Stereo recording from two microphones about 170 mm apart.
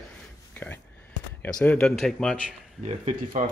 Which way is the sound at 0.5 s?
10° left (ahead or behind).